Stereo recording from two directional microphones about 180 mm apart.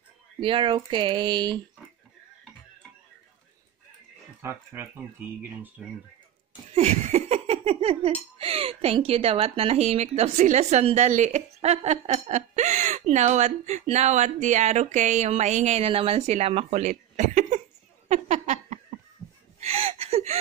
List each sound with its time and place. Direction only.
0.4 s speech: 30° right (ahead or behind)
4.4 s speech: 10° right (ahead or behind)
6.7 s speech: 35° right (ahead or behind)
18.0 s a sound: 40° right (ahead or behind)